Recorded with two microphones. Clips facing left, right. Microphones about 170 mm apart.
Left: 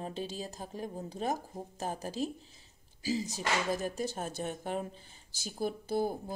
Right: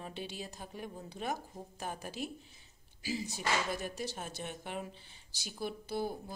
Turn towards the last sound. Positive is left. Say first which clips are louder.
# left 5 dB
turn(degrees=45)  # may be behind; listen again after turning